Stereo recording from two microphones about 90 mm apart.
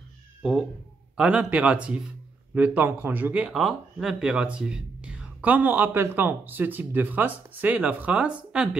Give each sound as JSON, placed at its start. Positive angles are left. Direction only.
{"t": 0.4, "sound": "speech", "side_deg": -5}